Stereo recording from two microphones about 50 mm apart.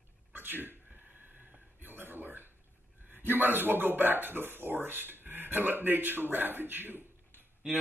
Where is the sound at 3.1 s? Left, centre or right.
Right.